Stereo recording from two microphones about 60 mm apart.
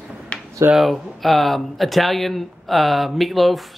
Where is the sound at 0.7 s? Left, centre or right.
Centre.